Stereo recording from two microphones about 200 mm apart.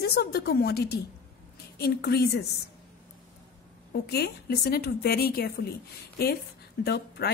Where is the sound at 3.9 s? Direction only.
50° left (ahead or behind).